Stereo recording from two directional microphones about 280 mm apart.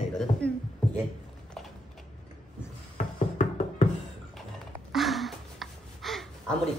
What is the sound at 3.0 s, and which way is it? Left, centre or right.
Music, left.